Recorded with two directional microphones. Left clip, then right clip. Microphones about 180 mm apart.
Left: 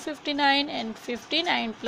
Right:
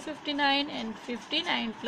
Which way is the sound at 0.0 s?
35° left (ahead or behind).